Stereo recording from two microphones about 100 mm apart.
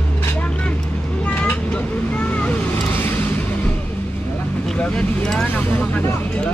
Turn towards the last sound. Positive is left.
turn(degrees=20)  # may be behind; listen again after turning